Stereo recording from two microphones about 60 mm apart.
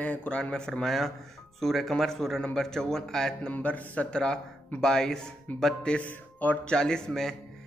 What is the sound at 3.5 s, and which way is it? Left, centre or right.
Speech, left.